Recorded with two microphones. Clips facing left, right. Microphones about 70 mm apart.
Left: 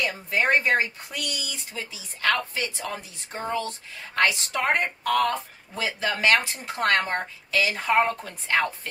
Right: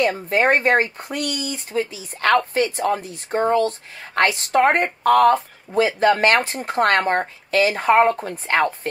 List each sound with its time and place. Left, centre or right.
0.0 s speech: right